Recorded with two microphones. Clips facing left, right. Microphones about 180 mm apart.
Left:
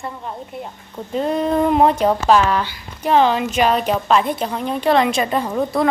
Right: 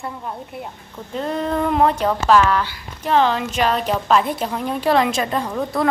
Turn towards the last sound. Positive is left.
turn(degrees=5)  # may be behind; listen again after turning